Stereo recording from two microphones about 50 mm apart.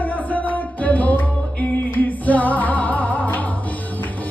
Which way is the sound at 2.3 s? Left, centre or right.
Left.